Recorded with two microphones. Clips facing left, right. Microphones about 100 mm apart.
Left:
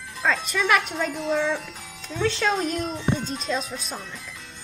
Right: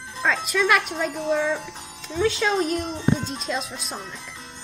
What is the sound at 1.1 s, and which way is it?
Speech, 25° right (ahead or behind).